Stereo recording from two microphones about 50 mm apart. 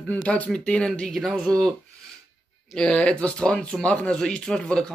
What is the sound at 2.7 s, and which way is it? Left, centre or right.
Speech, centre.